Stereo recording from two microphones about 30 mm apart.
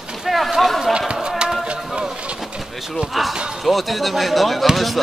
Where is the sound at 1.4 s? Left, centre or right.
Right.